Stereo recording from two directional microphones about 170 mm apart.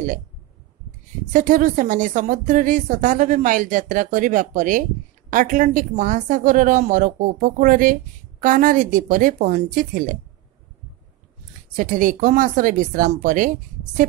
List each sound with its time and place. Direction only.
1.3 s a woman's voice: 50° right (ahead or behind)
11.7 s a woman's voice: 50° right (ahead or behind)